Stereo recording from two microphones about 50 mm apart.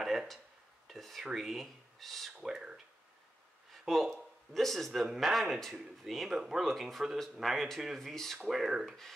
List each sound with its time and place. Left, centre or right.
0.0 s a sound: centre
0.8 s speech: centre
2.4 s speech: centre
3.7 s speech: centre
8.5 s speech: centre